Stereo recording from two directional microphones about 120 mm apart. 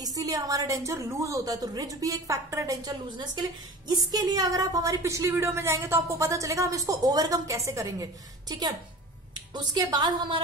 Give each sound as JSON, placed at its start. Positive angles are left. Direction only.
{"t": 0.0, "sound": "a woman's voice", "side_deg": -30}